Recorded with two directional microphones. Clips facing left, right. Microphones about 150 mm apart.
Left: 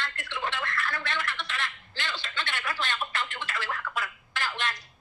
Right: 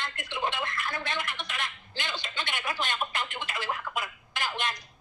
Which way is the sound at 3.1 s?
15° right (ahead or behind).